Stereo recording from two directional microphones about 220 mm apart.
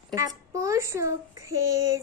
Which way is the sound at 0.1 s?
15° right (ahead or behind).